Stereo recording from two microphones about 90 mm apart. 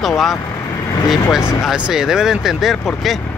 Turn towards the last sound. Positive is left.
turn(degrees=0)  # may be behind; listen again after turning